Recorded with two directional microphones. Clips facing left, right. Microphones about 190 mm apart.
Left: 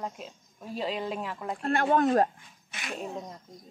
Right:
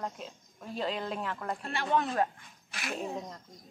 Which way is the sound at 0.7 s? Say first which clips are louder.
Left 2 dB; 5° left (ahead or behind).